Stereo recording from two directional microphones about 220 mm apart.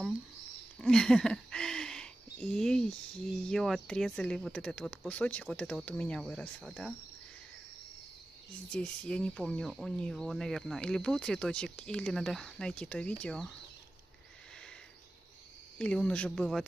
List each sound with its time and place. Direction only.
0.7 s a sound: 5° left (ahead or behind)
3.4 s speech: centre (ahead or behind)
8.7 s speech: 5° left (ahead or behind)
15.8 s speech: 5° left (ahead or behind)